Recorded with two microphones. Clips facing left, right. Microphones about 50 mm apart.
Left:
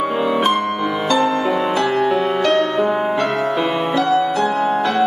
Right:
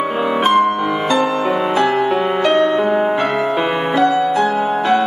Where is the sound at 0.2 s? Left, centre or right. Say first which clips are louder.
Right 5 dB; centre.